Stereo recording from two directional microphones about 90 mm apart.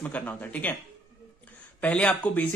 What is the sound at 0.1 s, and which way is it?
Speech, 15° left (ahead or behind).